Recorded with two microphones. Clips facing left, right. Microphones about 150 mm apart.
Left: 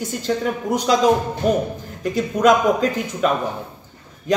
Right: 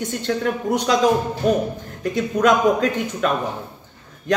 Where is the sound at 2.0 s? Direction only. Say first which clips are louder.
Left 1 dB; centre (ahead or behind).